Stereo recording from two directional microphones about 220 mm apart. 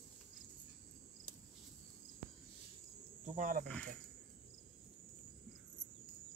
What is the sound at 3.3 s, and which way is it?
Cricket, 35° right (ahead or behind).